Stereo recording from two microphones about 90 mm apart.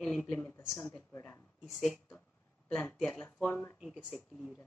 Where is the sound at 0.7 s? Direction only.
20° left (ahead or behind).